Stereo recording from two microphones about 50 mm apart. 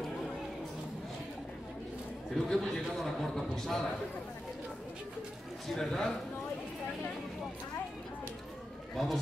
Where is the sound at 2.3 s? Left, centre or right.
Centre.